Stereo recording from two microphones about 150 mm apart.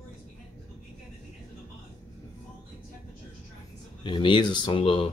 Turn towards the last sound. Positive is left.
turn(degrees=35)  # may be behind; listen again after turning